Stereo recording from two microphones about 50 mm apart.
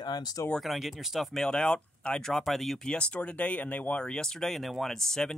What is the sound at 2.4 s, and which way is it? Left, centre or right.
Speech, centre.